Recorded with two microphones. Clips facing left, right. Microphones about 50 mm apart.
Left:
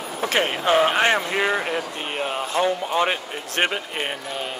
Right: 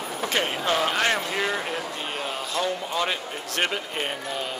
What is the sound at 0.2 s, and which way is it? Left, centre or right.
Speech, left.